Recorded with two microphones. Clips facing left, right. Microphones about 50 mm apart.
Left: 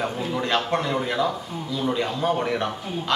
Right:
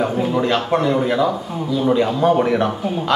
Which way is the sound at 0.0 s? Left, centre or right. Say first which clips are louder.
Right 8 dB; centre.